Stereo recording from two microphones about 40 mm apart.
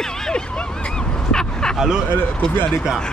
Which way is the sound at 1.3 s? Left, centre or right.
Centre.